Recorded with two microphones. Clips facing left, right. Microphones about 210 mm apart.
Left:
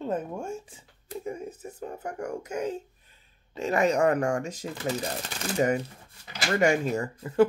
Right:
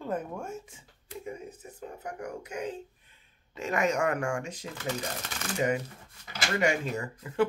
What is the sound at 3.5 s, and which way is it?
Speech, 35° left (ahead or behind).